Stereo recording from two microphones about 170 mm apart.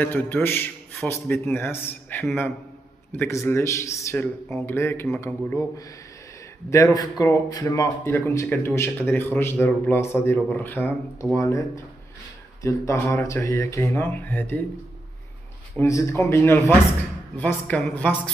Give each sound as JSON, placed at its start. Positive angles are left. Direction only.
{"t": 0.0, "sound": "a man's voice", "side_deg": 10}
{"t": 12.6, "sound": "a man's voice", "side_deg": 15}
{"t": 15.8, "sound": "a man's voice", "side_deg": 15}